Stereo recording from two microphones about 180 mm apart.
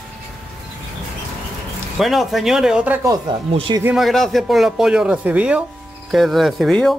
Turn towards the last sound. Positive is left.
turn(degrees=0)  # may be behind; listen again after turning